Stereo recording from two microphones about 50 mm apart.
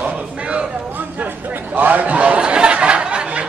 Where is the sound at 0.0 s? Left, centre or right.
Right.